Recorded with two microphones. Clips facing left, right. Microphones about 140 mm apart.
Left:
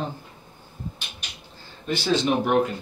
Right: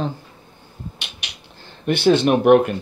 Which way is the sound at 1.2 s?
75° right (ahead or behind).